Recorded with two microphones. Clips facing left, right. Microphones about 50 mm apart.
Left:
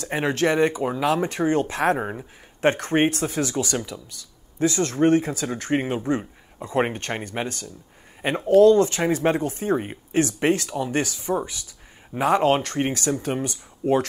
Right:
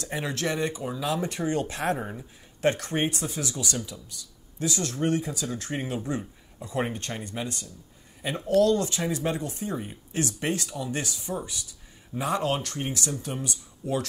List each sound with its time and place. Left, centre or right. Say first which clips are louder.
0.1 s speech: left 8 dB; left
4.6 s speech: left 8 dB; left